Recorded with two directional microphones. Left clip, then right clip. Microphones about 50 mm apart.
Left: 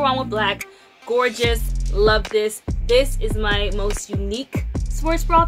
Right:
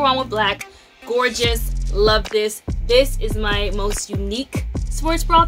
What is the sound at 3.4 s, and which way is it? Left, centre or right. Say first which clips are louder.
Speech: even; centre.